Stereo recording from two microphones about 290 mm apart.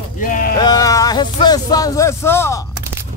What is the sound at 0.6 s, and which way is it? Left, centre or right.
Speech, centre.